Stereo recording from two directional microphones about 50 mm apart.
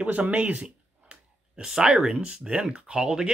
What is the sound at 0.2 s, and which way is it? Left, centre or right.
Speech, right.